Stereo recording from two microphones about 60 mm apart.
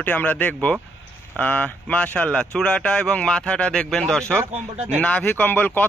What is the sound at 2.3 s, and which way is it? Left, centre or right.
Speech, centre.